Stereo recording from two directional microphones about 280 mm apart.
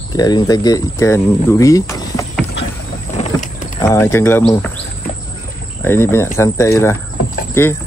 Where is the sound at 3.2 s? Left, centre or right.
Left.